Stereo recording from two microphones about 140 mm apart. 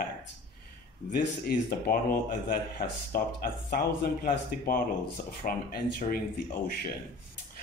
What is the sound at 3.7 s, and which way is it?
Speech, 90° left.